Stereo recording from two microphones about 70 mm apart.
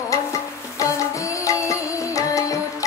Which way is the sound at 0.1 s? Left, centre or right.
Left.